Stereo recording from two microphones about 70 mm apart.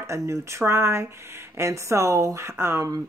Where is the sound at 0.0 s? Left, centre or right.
Right.